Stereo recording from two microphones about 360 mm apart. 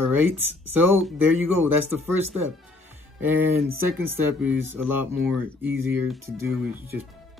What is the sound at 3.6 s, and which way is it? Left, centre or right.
Speech, right.